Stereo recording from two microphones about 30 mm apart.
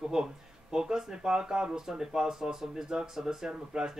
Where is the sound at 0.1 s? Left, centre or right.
Right.